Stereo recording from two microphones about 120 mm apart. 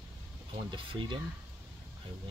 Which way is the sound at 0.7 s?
45° right (ahead or behind).